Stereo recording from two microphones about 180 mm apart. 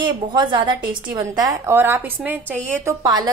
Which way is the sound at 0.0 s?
25° right (ahead or behind).